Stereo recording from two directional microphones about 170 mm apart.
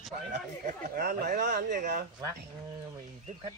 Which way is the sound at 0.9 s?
70° right (ahead or behind).